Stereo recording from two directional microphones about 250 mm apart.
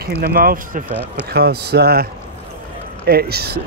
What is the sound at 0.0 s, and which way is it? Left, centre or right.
Speech, right.